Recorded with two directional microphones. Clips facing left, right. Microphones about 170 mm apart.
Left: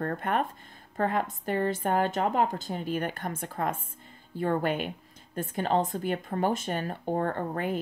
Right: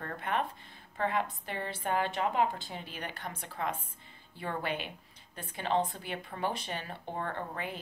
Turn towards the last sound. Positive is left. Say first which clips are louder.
# left 8 dB
turn(degrees=45)  # may be behind; listen again after turning